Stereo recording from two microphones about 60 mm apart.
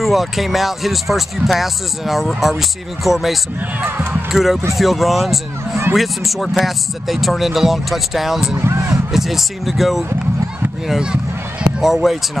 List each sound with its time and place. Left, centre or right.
0.0 s speech: centre
3.8 s speech: right
4.3 s speech: centre
8.5 s a sound: right
9.1 s speech: centre